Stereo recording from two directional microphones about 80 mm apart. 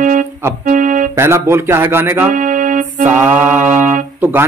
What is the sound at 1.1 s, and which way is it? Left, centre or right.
Speech, right.